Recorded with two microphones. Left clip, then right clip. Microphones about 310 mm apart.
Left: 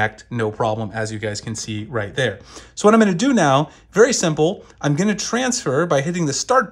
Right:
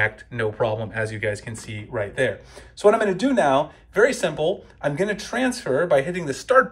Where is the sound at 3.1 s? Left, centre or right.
Left.